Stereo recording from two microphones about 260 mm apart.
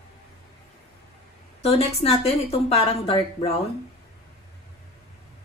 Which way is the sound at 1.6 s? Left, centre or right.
Left.